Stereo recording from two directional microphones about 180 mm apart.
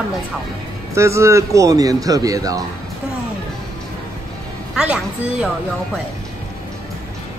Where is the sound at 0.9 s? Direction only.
15° right (ahead or behind).